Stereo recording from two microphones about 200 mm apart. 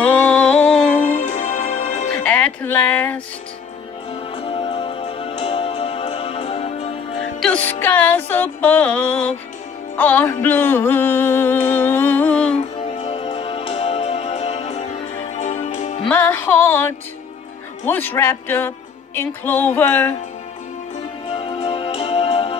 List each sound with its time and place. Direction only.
0.0 s music: 5° left (ahead or behind)
1.0 s music: 40° left (ahead or behind)
2.1 s a sound: 5° left (ahead or behind)
4.1 s music: 30° left (ahead or behind)
7.3 s music: 5° left (ahead or behind)
10.4 s a sound: 10° left (ahead or behind)
13.0 s music: 30° left (ahead or behind)
16.1 s music: 10° left (ahead or behind)
21.4 s music: 30° left (ahead or behind)